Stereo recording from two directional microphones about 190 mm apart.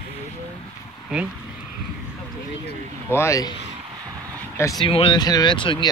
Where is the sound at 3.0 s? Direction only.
15° left (ahead or behind).